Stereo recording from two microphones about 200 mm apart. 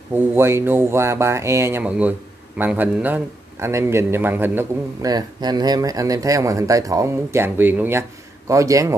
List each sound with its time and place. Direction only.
0.1 s speech: 10° right (ahead or behind)